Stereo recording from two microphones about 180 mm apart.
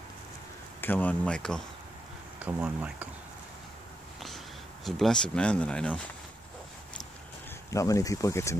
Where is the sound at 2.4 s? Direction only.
10° right (ahead or behind).